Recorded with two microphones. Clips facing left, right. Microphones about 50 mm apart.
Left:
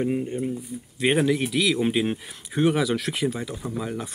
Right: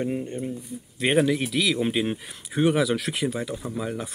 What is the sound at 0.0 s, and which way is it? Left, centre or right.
Speech, centre.